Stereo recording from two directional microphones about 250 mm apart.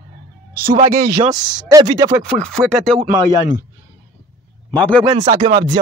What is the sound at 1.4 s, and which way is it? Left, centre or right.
Speech, centre.